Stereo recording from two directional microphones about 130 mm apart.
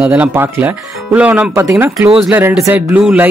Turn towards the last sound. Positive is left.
turn(degrees=-10)  # may be behind; listen again after turning